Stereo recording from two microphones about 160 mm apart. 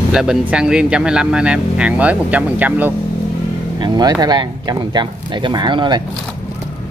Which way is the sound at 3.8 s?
25° right (ahead or behind).